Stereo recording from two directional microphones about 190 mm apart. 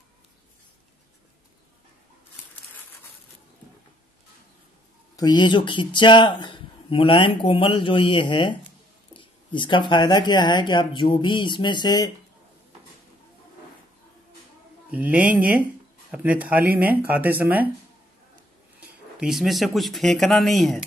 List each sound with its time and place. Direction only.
5.1 s speech: 20° left (ahead or behind)
14.9 s speech: 5° right (ahead or behind)
18.8 s speech: 5° right (ahead or behind)